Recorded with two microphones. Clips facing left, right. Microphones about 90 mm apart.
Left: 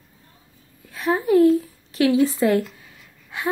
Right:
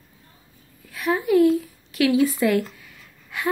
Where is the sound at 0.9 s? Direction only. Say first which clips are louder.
Left 1 dB; 30° left (ahead or behind).